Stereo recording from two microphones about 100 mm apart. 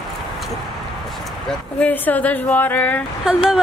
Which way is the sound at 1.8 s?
15° left (ahead or behind).